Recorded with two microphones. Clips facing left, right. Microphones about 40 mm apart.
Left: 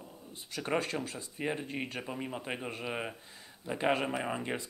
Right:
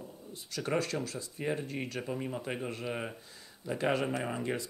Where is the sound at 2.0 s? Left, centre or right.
Centre.